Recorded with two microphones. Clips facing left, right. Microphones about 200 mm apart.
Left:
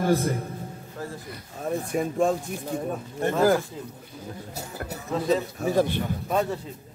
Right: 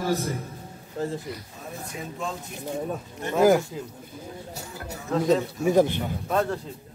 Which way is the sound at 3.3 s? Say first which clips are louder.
Right 3 dB; 15° right (ahead or behind).